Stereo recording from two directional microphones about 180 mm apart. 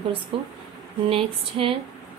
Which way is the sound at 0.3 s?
30° right (ahead or behind).